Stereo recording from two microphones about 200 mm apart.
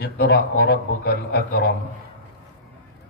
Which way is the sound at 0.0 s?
50° left (ahead or behind).